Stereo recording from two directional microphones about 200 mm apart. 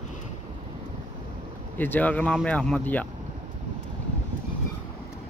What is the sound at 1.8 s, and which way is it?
Speech, 10° left (ahead or behind).